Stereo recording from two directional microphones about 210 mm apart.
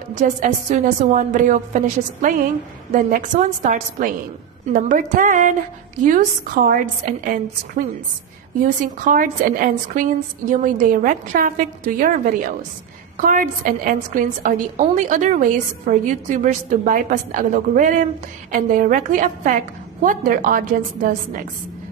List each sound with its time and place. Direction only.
0.1 s a woman's voice: 35° right (ahead or behind)
2.9 s a woman's voice: 35° right (ahead or behind)